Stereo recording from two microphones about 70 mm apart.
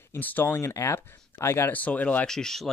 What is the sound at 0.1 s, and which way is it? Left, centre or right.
Speech, left.